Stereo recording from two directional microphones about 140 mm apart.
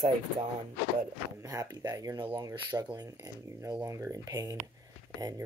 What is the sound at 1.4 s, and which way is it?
Speech, 25° right (ahead or behind).